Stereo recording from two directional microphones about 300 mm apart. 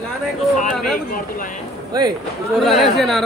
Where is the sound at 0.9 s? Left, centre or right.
Left.